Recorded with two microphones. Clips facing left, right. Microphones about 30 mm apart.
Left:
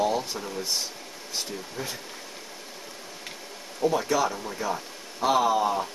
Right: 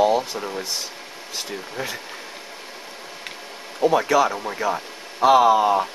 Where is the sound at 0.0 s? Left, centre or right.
Right.